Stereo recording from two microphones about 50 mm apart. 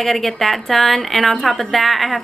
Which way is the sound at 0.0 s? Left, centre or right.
Centre.